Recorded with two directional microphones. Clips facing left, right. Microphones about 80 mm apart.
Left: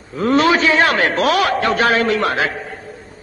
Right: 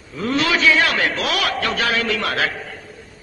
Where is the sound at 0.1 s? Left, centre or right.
Left.